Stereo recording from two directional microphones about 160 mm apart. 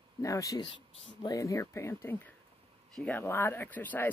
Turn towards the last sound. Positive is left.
turn(degrees=10)  # may be behind; listen again after turning